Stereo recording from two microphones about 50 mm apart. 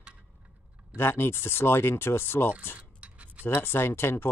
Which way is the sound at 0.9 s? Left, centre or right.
Left.